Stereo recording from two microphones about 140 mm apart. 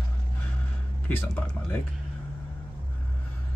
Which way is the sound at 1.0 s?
10° left (ahead or behind).